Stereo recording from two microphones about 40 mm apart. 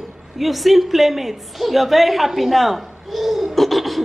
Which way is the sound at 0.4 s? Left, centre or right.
Centre.